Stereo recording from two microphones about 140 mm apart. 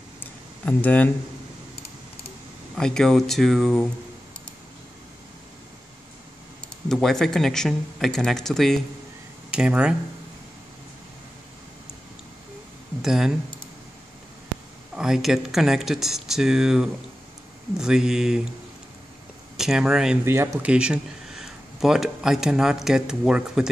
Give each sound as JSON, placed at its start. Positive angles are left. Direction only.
{"t": 0.2, "sound": "a sound", "side_deg": 10}
{"t": 2.7, "sound": "speech", "side_deg": 5}
{"t": 6.9, "sound": "speech", "side_deg": 0}
{"t": 13.0, "sound": "speech", "side_deg": -5}
{"t": 15.0, "sound": "speech", "side_deg": -5}
{"t": 19.5, "sound": "speech", "side_deg": -5}
{"t": 20.2, "sound": "speech", "side_deg": -20}
{"t": 20.7, "sound": "speech", "side_deg": -5}